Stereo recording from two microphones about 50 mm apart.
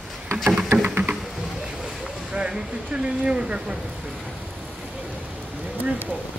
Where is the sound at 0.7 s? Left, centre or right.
Right.